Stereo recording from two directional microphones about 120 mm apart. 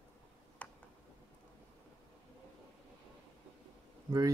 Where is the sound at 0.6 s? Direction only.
10° left (ahead or behind).